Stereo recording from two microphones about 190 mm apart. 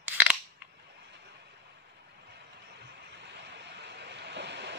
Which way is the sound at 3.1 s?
65° right (ahead or behind).